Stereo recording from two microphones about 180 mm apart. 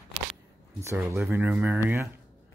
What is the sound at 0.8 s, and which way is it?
Speech, 15° right (ahead or behind).